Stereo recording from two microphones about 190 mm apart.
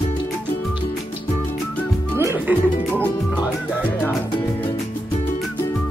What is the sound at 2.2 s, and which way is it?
Music, 15° right (ahead or behind).